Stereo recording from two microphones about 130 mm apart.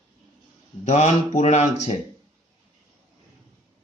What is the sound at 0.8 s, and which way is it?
Speech, 65° left (ahead or behind).